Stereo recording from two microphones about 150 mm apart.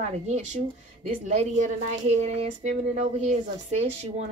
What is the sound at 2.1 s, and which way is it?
Speech, 45° right (ahead or behind).